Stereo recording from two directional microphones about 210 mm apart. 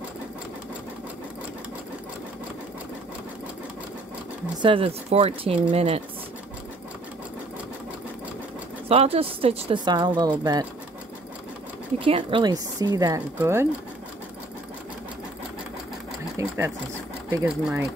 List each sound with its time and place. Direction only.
4.6 s speech: 25° right (ahead or behind)
8.8 s speech: 30° right (ahead or behind)
12.0 s speech: 25° right (ahead or behind)
16.3 s speech: 15° right (ahead or behind)